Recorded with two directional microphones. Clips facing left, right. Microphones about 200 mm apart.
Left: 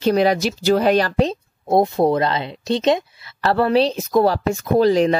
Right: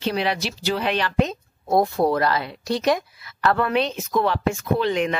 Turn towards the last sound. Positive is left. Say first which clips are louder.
# left 7 dB
turn(degrees=35)  # may be behind; listen again after turning